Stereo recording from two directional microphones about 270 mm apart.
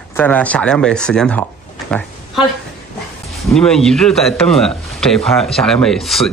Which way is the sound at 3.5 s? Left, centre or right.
Centre.